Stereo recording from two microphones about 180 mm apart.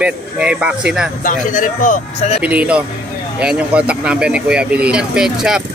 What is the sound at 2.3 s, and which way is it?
Speech, 5° right (ahead or behind).